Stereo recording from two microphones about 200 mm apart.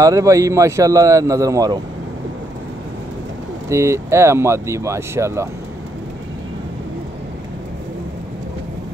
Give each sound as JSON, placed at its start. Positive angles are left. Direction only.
{"t": 0.0, "sound": "speech", "side_deg": -15}
{"t": 3.6, "sound": "speech", "side_deg": -15}